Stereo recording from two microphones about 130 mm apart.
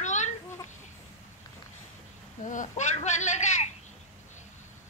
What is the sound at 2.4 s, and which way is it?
A man's voice, 75° left (ahead or behind).